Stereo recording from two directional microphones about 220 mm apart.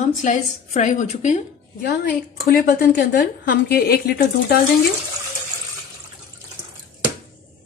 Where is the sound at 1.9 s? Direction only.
45° left (ahead or behind).